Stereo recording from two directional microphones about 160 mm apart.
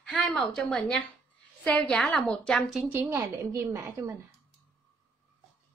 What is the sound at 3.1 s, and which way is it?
A woman's voice, 15° right (ahead or behind).